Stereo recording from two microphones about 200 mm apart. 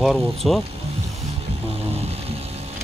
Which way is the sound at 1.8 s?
30° right (ahead or behind).